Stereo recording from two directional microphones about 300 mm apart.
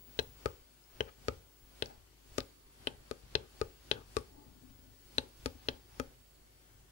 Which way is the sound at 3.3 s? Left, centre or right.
Left.